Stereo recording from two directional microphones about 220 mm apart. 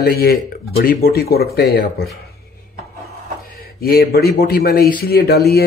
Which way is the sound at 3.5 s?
45° left (ahead or behind).